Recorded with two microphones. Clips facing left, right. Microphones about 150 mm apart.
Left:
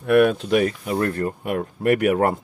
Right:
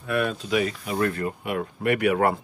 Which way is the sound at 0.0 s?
65° left (ahead or behind).